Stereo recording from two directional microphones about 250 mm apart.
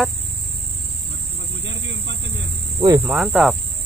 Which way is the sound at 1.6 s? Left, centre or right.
Right.